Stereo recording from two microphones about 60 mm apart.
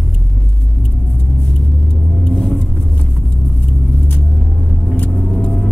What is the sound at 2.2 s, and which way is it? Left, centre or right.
Vehicle, centre.